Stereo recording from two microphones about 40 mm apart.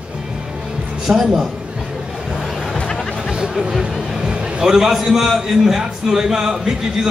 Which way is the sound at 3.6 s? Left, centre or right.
Centre.